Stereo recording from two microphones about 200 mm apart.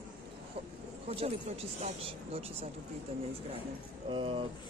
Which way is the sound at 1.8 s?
30° right (ahead or behind).